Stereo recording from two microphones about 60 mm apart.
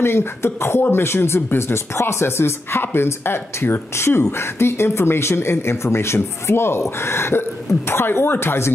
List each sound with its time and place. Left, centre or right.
0.0 s speech: left